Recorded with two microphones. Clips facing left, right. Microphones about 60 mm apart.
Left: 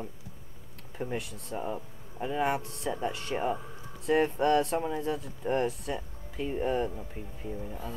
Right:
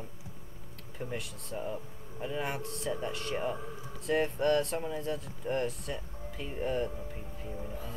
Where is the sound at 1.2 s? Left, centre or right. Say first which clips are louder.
Left 3 dB; centre.